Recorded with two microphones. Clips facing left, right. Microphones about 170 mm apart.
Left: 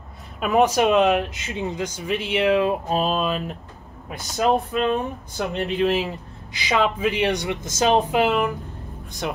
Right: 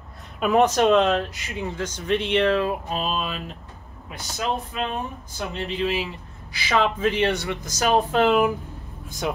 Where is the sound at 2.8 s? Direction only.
40° left (ahead or behind).